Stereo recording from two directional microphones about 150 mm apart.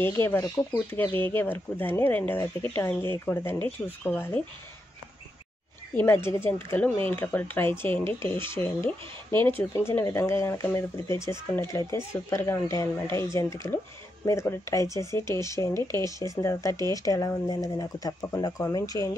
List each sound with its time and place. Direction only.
0.0 s speech: 15° left (ahead or behind)
5.9 s speech: 15° left (ahead or behind)
9.6 s speech: 15° left (ahead or behind)